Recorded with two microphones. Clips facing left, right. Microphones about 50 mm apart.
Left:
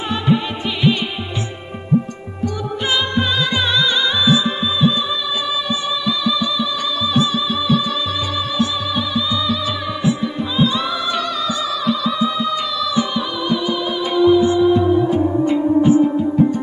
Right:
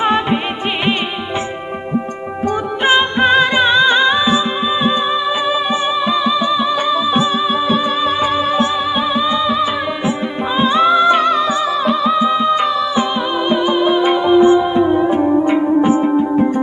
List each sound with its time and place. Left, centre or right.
0.0 s music: right
2.4 s music: right